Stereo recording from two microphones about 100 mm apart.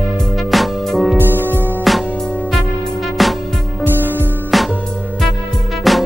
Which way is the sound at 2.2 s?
10° left (ahead or behind).